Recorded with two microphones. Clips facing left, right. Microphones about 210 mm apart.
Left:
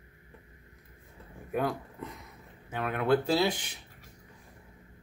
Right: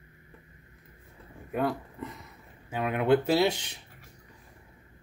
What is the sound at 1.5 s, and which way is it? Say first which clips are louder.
Speech: right 1 dB; centre (ahead or behind).